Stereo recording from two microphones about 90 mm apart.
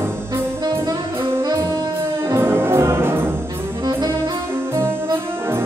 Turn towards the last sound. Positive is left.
turn(degrees=-30)  # may be behind; listen again after turning